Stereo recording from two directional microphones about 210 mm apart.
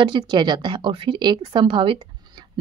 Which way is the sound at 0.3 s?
20° right (ahead or behind).